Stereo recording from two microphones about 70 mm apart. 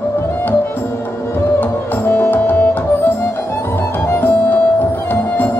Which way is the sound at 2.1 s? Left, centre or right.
Left.